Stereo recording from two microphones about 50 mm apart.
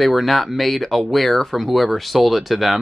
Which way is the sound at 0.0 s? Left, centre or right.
Centre.